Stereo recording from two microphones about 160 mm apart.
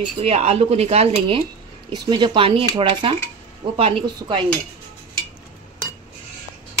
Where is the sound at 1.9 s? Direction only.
30° right (ahead or behind).